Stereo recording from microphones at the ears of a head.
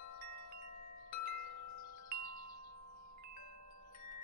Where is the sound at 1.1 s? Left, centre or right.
Left.